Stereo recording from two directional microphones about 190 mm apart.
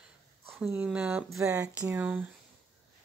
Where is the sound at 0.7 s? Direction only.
5° right (ahead or behind).